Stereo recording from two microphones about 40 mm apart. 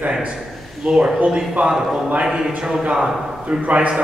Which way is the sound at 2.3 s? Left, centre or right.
Centre.